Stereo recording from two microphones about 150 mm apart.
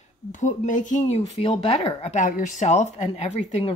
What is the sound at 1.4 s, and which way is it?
Speech, 35° left (ahead or behind).